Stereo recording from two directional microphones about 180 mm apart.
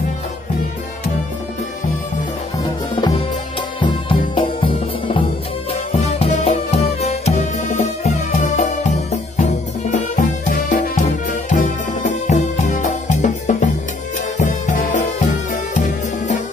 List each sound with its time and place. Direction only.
2.9 s music: 25° left (ahead or behind); by 16.3 s 45° left (ahead or behind)